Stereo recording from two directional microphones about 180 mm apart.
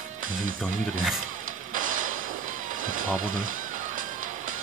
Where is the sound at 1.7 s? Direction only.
50° right (ahead or behind).